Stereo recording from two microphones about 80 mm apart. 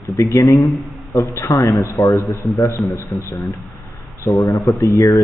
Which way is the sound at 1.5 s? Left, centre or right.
Left.